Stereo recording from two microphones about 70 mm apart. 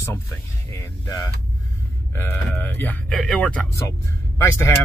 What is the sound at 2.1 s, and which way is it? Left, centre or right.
Speech, left.